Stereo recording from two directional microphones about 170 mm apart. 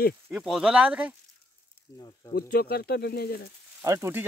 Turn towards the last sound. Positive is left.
turn(degrees=-15)  # may be behind; listen again after turning